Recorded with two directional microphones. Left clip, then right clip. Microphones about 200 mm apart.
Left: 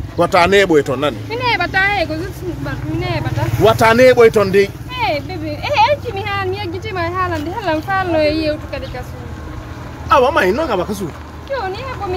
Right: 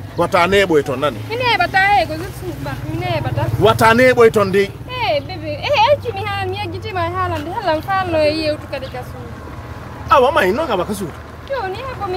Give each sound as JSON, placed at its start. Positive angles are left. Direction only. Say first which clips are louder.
{"t": 0.2, "sound": "speech", "louder": "left 2 dB", "side_deg": 20}
{"t": 1.3, "sound": "speech", "louder": "right 2 dB", "side_deg": -15}
{"t": 3.6, "sound": "speech", "louder": "left 2 dB", "side_deg": 10}
{"t": 4.9, "sound": "vehicle", "louder": "right 1 dB", "side_deg": -25}
{"t": 10.0, "sound": "speech", "louder": "even", "side_deg": 0}